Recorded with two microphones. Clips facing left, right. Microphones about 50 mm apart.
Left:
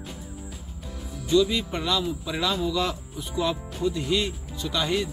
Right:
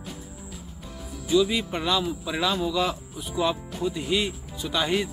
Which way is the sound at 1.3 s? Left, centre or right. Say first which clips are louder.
Even; centre.